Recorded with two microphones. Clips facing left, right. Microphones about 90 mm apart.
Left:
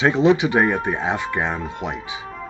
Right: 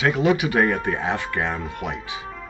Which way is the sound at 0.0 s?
25° left (ahead or behind).